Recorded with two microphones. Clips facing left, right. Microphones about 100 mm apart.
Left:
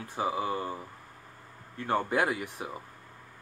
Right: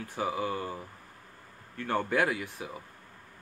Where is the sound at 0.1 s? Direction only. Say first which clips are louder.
Left 1 dB; 30° left (ahead or behind).